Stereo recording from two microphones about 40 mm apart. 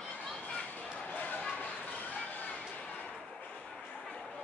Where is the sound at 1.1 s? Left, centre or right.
Left.